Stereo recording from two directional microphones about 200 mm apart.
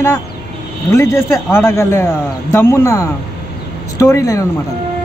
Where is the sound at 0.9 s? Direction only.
15° left (ahead or behind).